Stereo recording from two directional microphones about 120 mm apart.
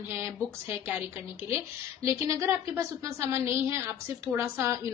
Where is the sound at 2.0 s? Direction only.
25° right (ahead or behind).